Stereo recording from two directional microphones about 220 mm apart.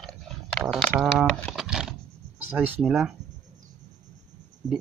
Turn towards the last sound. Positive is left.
turn(degrees=-5)  # may be behind; listen again after turning